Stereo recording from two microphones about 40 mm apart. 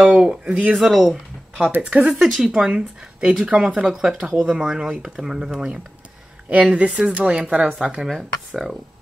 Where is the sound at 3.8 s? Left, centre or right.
Centre.